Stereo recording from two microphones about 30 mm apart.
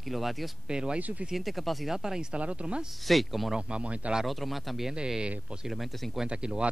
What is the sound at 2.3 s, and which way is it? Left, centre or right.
Speech, right.